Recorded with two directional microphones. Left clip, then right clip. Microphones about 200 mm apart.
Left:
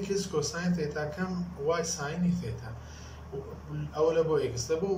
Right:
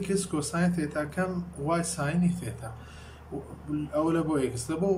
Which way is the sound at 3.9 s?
45° right (ahead or behind).